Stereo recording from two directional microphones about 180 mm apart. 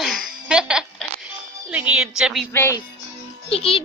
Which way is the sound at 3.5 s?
30° left (ahead or behind).